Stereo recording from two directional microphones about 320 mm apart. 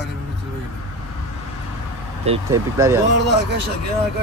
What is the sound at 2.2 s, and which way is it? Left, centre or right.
Speech, centre.